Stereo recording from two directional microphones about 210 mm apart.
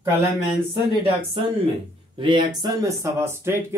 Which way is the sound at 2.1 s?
20° right (ahead or behind).